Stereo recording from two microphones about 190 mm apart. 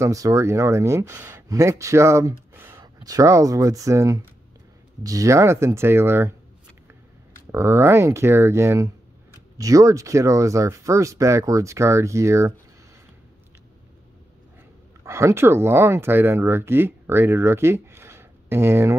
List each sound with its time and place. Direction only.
0.0 s speech: 15° right (ahead or behind)
7.5 s speech: 15° right (ahead or behind)
15.0 s speech: 15° right (ahead or behind)